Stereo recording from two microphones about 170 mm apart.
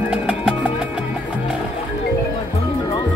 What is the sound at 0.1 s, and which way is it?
Music, 5° right (ahead or behind).